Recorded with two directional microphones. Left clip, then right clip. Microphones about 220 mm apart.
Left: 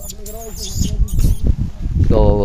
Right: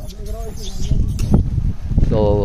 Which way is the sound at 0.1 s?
45° left (ahead or behind).